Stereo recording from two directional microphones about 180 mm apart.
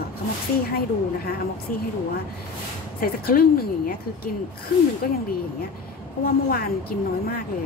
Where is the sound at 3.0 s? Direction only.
55° left (ahead or behind).